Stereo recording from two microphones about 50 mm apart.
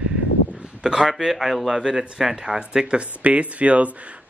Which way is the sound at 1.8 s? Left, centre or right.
Centre.